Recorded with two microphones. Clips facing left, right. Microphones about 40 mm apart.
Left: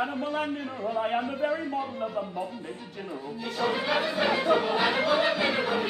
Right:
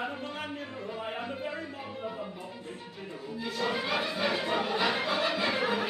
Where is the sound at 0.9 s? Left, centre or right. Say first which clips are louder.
Left 10 dB; left.